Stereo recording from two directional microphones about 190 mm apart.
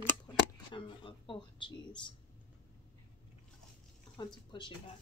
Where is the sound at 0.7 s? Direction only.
25° left (ahead or behind).